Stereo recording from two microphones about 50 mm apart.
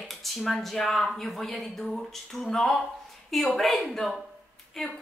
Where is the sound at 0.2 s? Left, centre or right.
Centre.